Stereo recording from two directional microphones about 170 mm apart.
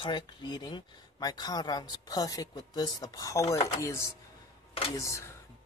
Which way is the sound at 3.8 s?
15° left (ahead or behind).